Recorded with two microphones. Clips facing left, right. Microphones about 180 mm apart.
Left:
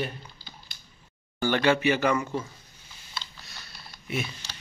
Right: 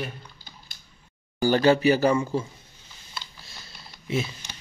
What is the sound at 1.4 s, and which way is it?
Speech, 35° right (ahead or behind).